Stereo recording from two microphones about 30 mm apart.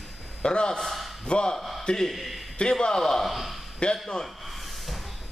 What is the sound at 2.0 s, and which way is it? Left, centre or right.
Speech, centre.